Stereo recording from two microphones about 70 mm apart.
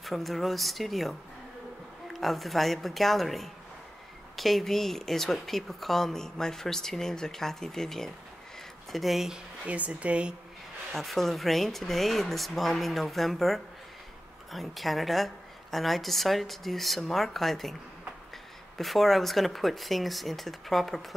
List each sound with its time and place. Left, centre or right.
0.0 s speech: centre
2.1 s speech: centre
9.7 s speech: centre
10.9 s speech: centre
18.8 s speech: centre